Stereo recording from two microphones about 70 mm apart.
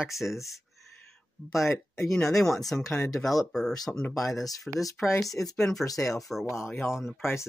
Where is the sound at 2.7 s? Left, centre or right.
Left.